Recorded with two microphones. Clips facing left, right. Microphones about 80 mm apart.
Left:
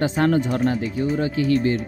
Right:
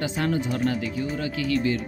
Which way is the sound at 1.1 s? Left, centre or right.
Left.